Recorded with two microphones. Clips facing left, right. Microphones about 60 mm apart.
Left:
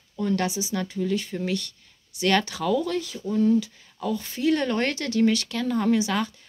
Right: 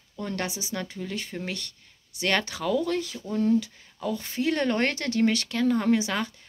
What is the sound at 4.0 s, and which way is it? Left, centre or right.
Speech, right.